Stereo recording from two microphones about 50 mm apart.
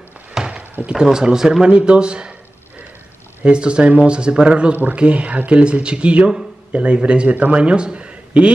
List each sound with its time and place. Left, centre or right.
0.5 s a sound: right
0.9 s speech: centre
3.4 s speech: centre